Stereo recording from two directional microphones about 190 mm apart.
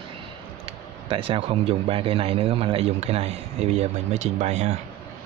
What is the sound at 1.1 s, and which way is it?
A man's voice, 30° right (ahead or behind).